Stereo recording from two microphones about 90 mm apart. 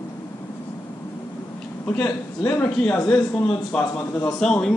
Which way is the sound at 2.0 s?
35° left (ahead or behind).